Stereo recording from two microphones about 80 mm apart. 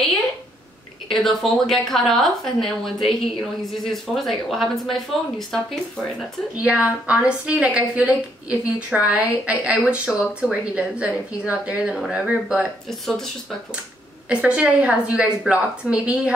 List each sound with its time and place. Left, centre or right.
1.0 s a woman's voice: centre
6.6 s a woman's voice: centre
14.3 s a woman's voice: centre